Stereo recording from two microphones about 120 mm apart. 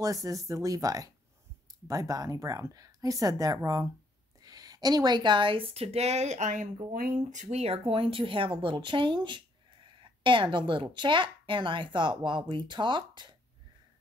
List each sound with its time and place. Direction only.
0.0 s speech: 30° right (ahead or behind); by 7.4 s 90° right
7.5 s a woman's voice: 55° right (ahead or behind); by 13.4 s 40° right (ahead or behind)